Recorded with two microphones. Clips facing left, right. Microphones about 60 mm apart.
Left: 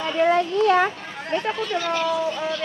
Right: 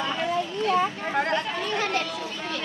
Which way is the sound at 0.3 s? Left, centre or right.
Left.